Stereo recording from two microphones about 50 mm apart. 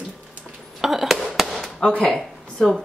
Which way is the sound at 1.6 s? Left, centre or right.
Centre.